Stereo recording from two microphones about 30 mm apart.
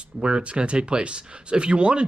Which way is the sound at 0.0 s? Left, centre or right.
Right.